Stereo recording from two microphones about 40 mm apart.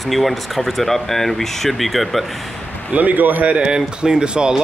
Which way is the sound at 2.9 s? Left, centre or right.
Right.